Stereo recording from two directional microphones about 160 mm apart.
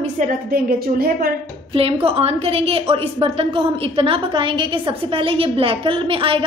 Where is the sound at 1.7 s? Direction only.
35° right (ahead or behind).